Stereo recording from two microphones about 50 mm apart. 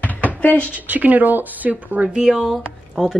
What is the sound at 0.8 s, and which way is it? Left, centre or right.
Speech, right.